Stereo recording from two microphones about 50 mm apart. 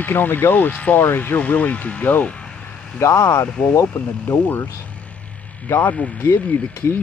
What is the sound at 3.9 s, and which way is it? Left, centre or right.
Speech, left.